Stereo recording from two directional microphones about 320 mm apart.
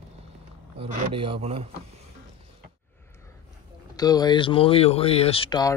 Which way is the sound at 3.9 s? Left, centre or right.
Centre.